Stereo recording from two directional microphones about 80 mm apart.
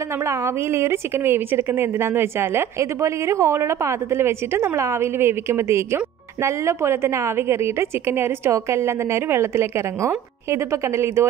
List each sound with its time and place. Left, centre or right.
0.3 s a woman's voice: right